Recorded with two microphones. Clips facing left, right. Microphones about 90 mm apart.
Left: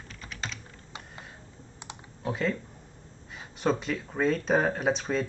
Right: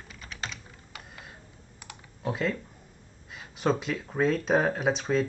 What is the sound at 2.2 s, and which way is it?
Speech, centre (ahead or behind).